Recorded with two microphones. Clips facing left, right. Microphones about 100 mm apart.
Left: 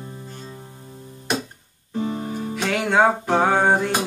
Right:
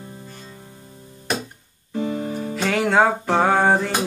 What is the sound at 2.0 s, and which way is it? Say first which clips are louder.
Music: right 1 dB; 25° left (ahead or behind).